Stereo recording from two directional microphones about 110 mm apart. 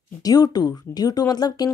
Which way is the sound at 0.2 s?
35° left (ahead or behind).